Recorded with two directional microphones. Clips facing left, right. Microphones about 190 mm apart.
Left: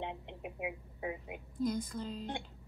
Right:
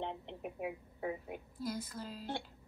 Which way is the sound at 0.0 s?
10° left (ahead or behind).